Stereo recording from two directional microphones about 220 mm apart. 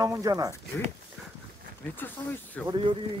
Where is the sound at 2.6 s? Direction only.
20° right (ahead or behind).